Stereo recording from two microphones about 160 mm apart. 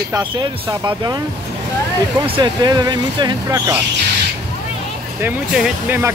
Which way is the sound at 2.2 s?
30° right (ahead or behind).